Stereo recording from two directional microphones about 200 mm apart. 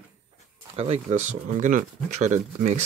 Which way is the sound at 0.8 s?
30° right (ahead or behind).